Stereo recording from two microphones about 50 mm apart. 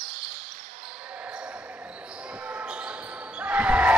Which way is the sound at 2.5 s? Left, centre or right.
Right.